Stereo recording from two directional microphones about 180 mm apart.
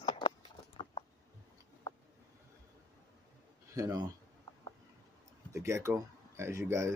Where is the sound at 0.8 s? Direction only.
30° left (ahead or behind).